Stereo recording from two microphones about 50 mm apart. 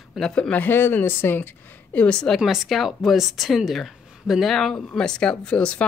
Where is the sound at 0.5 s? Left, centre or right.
Left.